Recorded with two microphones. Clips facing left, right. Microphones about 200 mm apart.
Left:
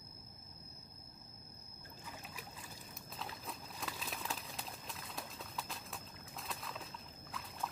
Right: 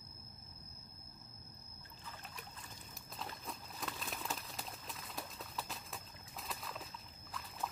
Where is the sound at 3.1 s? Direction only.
Centre (ahead or behind).